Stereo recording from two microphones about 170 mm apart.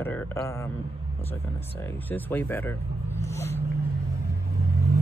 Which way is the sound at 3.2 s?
15° left (ahead or behind).